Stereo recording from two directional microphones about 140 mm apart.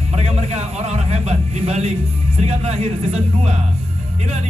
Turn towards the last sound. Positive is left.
turn(degrees=-45)  # may be behind; listen again after turning